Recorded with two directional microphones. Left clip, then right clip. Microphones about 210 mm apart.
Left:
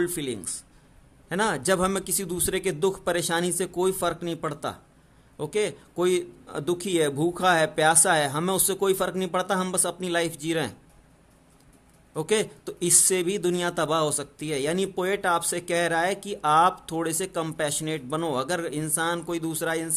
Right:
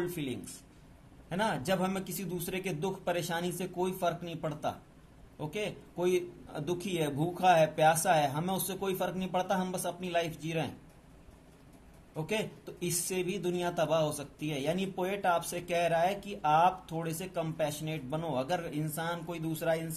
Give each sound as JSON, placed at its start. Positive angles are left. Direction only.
{"t": 0.2, "sound": "speech", "side_deg": 50}
{"t": 12.2, "sound": "speech", "side_deg": 50}